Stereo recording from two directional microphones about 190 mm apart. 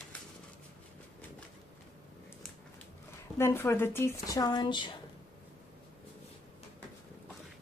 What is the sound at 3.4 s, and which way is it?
Speech, 15° left (ahead or behind).